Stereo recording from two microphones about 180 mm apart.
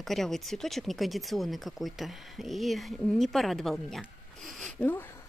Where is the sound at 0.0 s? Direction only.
Centre (ahead or behind).